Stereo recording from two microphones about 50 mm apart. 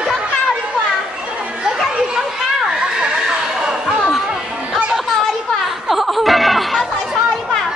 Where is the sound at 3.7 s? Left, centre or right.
Centre.